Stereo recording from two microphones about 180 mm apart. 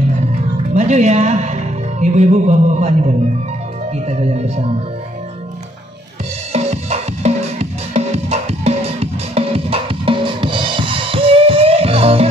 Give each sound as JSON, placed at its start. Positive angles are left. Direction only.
{"t": 0.7, "sound": "speech", "side_deg": -40}
{"t": 6.5, "sound": "music", "side_deg": -35}